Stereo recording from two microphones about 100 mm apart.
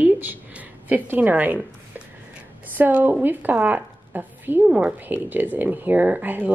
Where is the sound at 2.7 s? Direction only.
20° right (ahead or behind).